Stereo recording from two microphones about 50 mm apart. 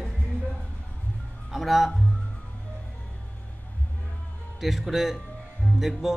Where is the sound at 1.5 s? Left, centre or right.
Centre.